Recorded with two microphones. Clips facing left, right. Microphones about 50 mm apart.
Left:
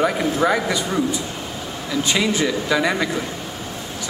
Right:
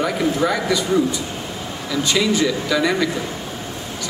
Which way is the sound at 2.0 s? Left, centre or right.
Left.